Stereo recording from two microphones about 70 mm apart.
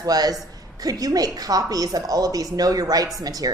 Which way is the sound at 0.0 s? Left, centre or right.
Right.